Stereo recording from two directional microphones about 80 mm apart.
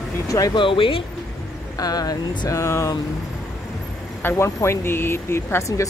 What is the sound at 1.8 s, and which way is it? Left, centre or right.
Speech, left.